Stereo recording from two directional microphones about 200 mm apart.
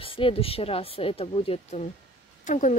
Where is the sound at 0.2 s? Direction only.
30° left (ahead or behind).